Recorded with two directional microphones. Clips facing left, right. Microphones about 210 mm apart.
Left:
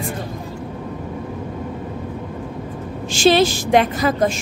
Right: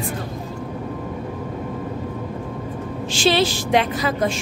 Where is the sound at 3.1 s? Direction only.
45° left (ahead or behind).